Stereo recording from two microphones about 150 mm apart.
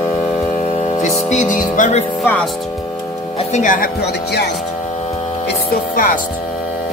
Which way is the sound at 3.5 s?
60° left (ahead or behind).